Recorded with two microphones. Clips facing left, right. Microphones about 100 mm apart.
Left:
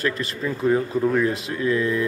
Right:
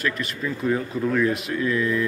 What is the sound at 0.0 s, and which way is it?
A man's voice, 30° left (ahead or behind).